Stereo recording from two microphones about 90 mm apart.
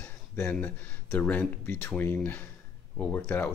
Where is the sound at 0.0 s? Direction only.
20° left (ahead or behind).